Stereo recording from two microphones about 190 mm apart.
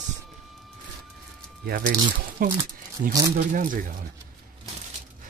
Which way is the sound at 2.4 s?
50° right (ahead or behind).